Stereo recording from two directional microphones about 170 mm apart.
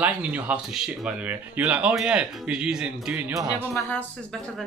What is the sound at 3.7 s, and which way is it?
Speech, 10° left (ahead or behind).